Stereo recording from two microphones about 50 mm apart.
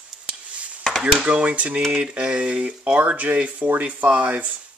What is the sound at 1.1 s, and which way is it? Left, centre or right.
Speech, right.